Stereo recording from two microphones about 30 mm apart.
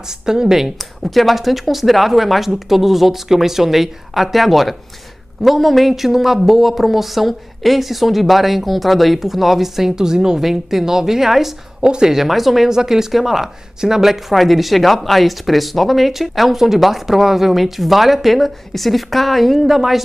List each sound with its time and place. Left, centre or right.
0.1 s speech: centre
0.7 s speech: centre
9.9 s speech: right
10.4 s speech: centre
11.8 s speech: right
12.3 s speech: centre
12.6 s speech: centre
14.3 s speech: centre